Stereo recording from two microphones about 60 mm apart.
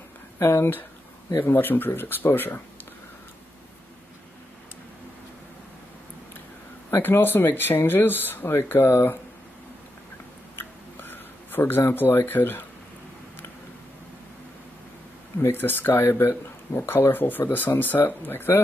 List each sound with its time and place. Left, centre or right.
0.4 s a man's voice: left
7.0 s a man's voice: left
10.5 s a sound: left
11.9 s a man's voice: left
15.5 s a man's voice: left
16.1 s a man's voice: left